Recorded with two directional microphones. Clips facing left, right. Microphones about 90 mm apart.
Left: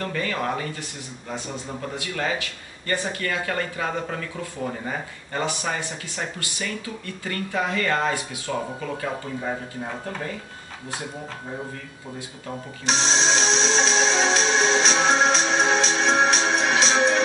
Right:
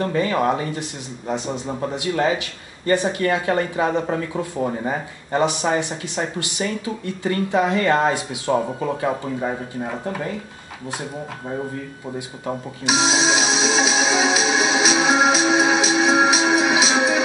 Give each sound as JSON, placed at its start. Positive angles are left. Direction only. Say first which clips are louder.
{"t": 0.0, "sound": "speech", "louder": "right 7 dB", "side_deg": -25}
{"t": 12.8, "sound": "music", "louder": "right 4 dB", "side_deg": -5}